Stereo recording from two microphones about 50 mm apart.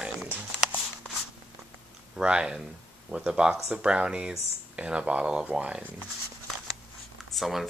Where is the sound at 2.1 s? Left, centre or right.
Centre.